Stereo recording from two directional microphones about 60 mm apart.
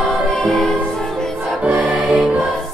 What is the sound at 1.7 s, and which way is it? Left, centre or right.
Music, centre.